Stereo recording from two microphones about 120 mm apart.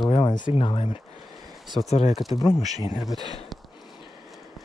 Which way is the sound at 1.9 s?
65° left (ahead or behind).